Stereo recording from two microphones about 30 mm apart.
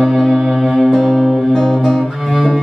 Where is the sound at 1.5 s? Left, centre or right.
Centre.